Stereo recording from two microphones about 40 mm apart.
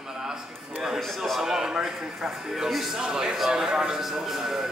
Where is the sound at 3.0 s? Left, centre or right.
Centre.